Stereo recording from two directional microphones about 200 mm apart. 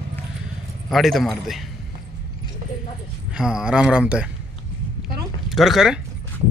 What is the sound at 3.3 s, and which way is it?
Speech, 5° right (ahead or behind).